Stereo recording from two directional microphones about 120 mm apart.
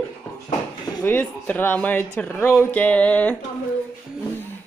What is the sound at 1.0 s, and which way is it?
Speech, 15° left (ahead or behind).